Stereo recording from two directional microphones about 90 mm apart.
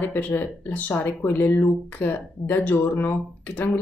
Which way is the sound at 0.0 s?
20° left (ahead or behind).